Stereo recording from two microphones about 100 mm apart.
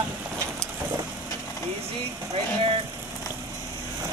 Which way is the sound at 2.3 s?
75° right (ahead or behind).